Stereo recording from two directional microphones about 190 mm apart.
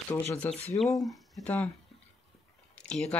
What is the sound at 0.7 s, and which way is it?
Speech, 10° left (ahead or behind).